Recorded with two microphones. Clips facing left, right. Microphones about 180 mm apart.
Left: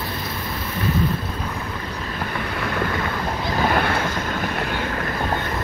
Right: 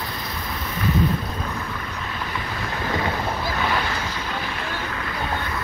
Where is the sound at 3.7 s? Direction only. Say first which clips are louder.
Left 5 dB; 55° left (ahead or behind).